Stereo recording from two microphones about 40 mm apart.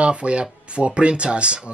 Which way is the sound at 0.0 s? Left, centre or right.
Right.